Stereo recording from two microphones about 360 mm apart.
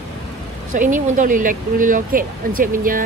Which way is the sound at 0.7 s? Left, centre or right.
Right.